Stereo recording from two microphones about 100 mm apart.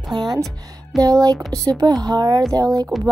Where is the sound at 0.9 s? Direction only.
40° right (ahead or behind).